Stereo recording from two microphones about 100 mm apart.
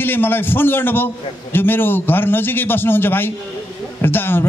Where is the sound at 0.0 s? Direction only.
20° left (ahead or behind).